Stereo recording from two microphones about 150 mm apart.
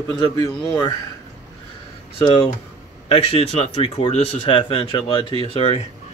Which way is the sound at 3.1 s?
40° left (ahead or behind).